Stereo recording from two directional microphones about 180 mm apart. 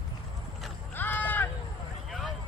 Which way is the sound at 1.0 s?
10° left (ahead or behind).